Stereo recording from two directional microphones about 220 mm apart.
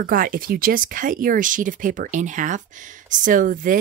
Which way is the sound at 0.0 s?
40° right (ahead or behind).